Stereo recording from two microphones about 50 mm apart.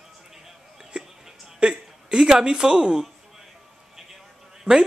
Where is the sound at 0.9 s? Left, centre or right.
Right.